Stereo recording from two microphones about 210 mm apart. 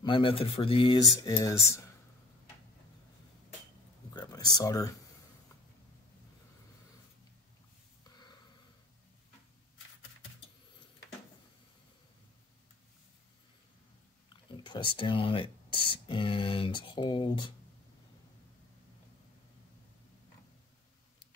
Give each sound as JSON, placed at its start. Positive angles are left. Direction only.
{"t": 0.0, "sound": "speech", "side_deg": 25}
{"t": 4.1, "sound": "a sound", "side_deg": 20}
{"t": 4.6, "sound": "speech", "side_deg": 15}
{"t": 14.6, "sound": "speech", "side_deg": 20}